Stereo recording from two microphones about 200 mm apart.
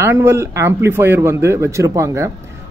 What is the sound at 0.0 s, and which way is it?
Speech, 15° right (ahead or behind).